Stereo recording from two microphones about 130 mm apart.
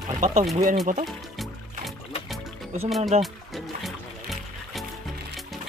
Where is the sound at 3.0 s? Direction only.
55° right (ahead or behind).